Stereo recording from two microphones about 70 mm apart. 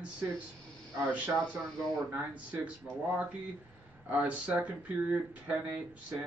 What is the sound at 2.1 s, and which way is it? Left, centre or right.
Speech, right.